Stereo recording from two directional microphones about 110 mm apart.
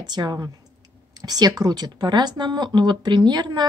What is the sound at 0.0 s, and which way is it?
Speech, 40° right (ahead or behind).